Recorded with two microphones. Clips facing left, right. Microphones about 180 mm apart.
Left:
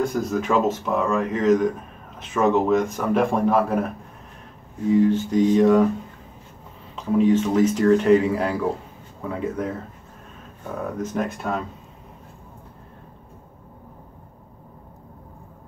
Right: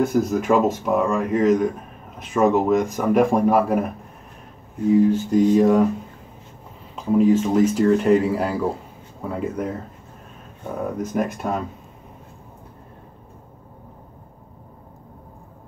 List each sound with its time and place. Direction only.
0.0 s speech: 15° right (ahead or behind)
4.9 s speech: 10° right (ahead or behind)
7.2 s speech: 5° right (ahead or behind)
11.0 s speech: 15° right (ahead or behind)